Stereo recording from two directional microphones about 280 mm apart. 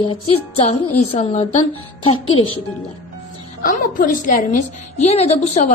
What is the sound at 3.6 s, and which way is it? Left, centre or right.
A woman's voice, left.